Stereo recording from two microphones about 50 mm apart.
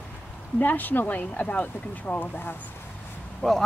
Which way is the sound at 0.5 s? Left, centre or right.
Left.